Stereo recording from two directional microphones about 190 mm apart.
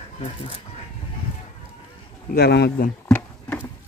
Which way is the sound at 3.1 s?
10° left (ahead or behind).